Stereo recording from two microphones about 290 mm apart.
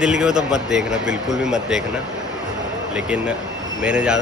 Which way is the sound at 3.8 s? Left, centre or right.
Centre.